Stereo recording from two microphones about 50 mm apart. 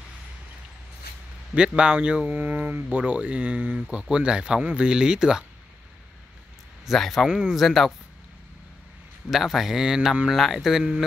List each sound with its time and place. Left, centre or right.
1.5 s speech: centre
6.9 s a man's voice: centre
7.2 s speech: centre
7.5 s a man's voice: centre
9.3 s a man's voice: centre